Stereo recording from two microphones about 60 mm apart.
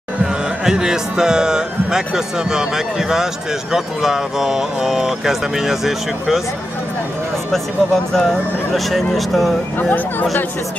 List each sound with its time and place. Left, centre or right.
0.7 s speech: centre
7.5 s speech: centre
9.8 s speech: left